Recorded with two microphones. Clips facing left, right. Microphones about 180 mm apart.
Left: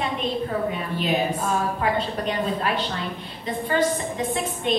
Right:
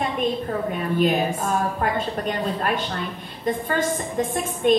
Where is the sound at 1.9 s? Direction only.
50° right (ahead or behind).